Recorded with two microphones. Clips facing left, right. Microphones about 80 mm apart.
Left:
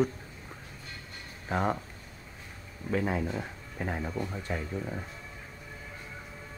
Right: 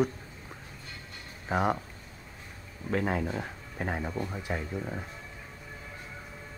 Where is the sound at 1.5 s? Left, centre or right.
Centre.